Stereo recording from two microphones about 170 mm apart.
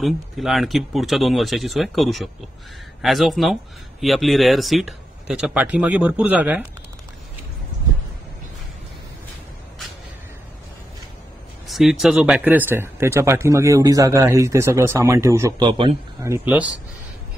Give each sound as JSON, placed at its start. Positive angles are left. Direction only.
{"t": 0.0, "sound": "speech", "side_deg": 0}
{"t": 11.6, "sound": "speech", "side_deg": 0}